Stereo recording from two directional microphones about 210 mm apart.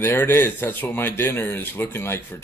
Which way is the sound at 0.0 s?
10° left (ahead or behind).